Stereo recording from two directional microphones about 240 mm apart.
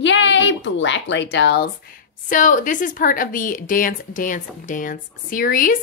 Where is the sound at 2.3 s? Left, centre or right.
Left.